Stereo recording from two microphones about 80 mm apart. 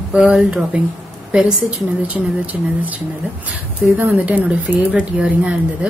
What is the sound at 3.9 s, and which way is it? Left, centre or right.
Speech, centre.